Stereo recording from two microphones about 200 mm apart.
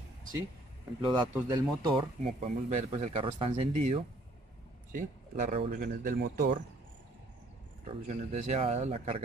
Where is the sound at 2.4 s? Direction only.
35° right (ahead or behind); by 6.6 s 55° right (ahead or behind).